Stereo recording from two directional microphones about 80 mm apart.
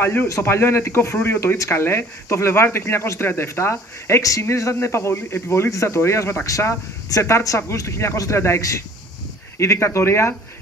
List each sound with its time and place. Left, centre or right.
0.0 s speech: left